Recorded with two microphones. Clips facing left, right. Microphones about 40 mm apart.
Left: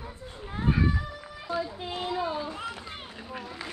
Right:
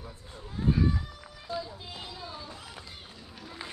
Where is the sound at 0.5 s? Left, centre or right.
Left.